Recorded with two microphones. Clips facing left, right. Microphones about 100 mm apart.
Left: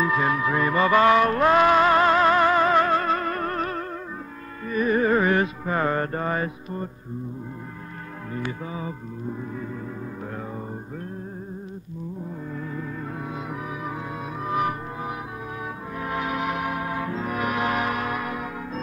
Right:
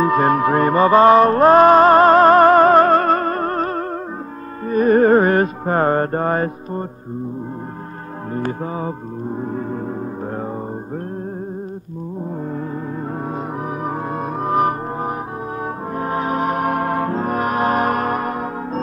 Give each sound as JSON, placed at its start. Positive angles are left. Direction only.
{"t": 0.0, "sound": "music", "side_deg": -50}
{"t": 8.3, "sound": "gong", "side_deg": -45}
{"t": 13.3, "sound": "music", "side_deg": -45}